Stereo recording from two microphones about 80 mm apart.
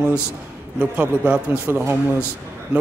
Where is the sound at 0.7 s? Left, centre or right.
Centre.